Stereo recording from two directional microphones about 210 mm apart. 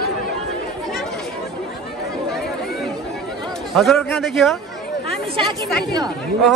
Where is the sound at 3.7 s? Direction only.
Centre (ahead or behind).